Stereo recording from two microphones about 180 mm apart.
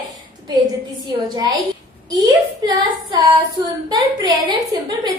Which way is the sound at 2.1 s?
20° right (ahead or behind).